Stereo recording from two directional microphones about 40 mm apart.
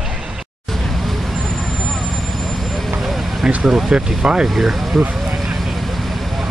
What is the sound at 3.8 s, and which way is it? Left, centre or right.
Speech, centre.